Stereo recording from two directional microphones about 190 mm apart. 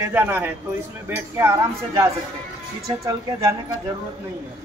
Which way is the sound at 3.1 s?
20° right (ahead or behind).